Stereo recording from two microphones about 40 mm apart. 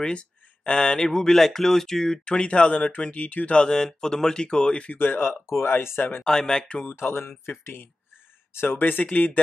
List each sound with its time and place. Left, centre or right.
0.0 s a sound: left
0.7 s speech: centre
2.2 s speech: left
3.5 s speech: centre
4.9 s speech: left
6.2 s speech: centre
6.9 s speech: left
8.5 s speech: left